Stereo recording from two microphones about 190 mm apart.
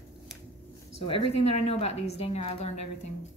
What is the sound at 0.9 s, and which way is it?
A woman's voice, 30° left (ahead or behind).